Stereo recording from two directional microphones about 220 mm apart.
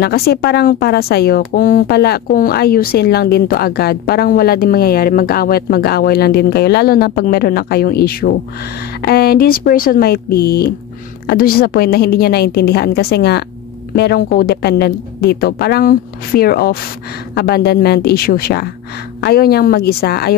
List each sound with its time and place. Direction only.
0.0 s speech: 45° left (ahead or behind)